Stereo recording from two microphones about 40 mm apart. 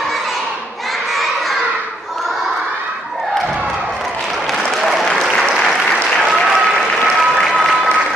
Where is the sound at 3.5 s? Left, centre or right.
Centre.